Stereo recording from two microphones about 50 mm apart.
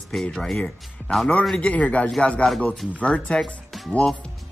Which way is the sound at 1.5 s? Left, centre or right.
Left.